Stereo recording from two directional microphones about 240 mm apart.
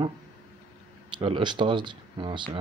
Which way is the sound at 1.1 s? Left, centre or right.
Right.